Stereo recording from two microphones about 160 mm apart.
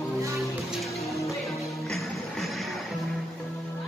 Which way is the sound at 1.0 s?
20° left (ahead or behind).